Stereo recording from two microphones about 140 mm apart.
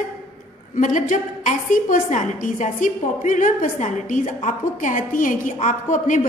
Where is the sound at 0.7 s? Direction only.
65° left (ahead or behind).